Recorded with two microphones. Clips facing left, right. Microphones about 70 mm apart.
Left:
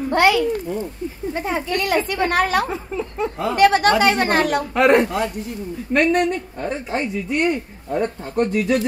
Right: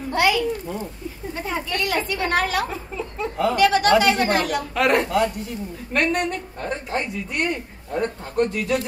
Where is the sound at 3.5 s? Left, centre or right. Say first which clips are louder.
Left 2 dB; left.